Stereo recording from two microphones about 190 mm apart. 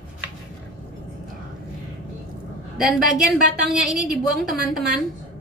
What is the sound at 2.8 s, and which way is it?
A woman's voice, 5° right (ahead or behind).